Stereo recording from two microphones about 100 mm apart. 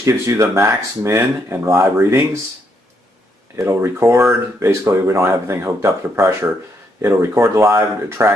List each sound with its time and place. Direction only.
0.0 s speech: 30° right (ahead or behind)
3.6 s speech: 25° right (ahead or behind)